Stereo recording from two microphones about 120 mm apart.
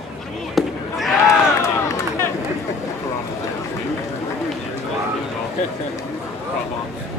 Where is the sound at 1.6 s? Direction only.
25° left (ahead or behind).